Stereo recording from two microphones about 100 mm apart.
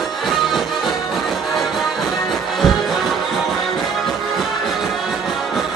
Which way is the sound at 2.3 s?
Centre (ahead or behind).